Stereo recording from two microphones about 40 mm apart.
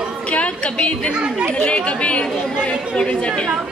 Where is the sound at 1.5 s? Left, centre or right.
Left.